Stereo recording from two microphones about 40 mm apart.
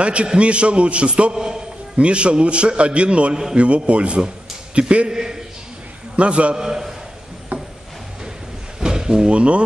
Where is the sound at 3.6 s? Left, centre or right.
Right; by 5.4 s centre.